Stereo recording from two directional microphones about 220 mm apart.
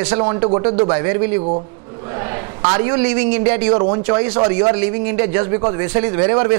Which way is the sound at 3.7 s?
25° right (ahead or behind).